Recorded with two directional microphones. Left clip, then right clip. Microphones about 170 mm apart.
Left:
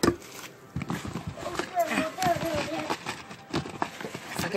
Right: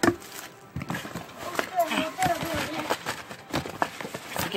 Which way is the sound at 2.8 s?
20° right (ahead or behind).